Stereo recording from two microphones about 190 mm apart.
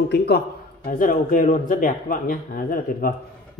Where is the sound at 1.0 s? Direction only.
45° left (ahead or behind).